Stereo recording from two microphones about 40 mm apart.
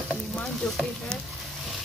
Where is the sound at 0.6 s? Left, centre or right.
Centre.